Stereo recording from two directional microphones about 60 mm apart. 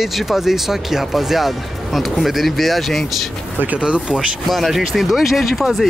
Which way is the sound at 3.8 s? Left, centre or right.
Centre.